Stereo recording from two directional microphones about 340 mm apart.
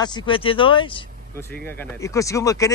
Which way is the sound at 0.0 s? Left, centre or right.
Centre.